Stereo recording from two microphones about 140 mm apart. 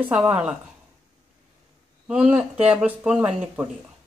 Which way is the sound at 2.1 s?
10° right (ahead or behind).